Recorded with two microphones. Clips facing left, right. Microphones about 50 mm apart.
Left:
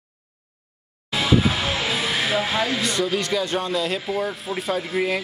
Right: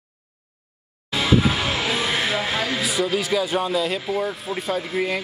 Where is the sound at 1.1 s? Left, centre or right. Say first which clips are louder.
Right 1 dB; centre.